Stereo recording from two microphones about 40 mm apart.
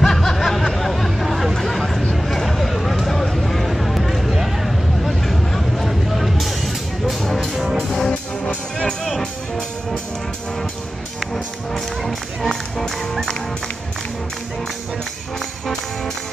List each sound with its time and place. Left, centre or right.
0.0 s snicker: centre
1.6 s a sound: centre
5.9 s music: centre
7.4 s music: centre
7.8 s music: centre
9.1 s music: centre
12.1 s music: centre
15.3 s music: centre